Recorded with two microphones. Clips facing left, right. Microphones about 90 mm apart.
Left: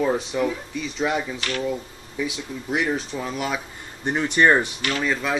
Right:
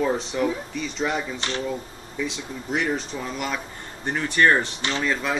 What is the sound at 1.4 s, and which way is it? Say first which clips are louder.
Speech: left 1 dB; 25° right (ahead or behind).